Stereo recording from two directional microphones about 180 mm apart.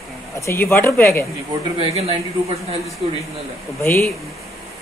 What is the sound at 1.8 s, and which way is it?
Speech, 35° right (ahead or behind).